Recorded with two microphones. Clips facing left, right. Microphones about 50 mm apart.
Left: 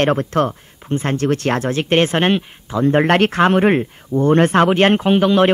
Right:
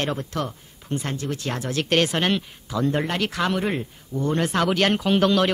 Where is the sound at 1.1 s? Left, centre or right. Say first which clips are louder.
Left 11 dB; left.